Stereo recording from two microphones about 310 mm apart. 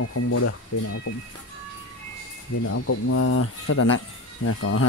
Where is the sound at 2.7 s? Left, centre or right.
Left.